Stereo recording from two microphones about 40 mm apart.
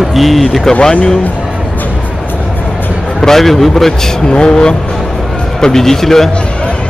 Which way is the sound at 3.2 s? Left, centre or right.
Centre.